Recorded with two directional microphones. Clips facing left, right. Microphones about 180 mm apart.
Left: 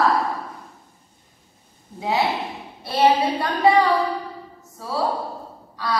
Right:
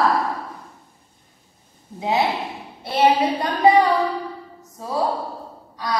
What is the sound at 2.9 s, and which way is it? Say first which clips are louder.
A woman's voice: right 1 dB; 20° right (ahead or behind).